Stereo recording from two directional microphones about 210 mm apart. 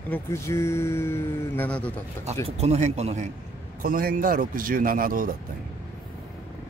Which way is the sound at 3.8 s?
45° right (ahead or behind).